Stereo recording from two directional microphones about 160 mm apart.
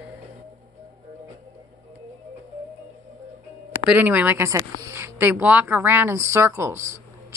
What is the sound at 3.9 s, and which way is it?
Speech, 10° right (ahead or behind).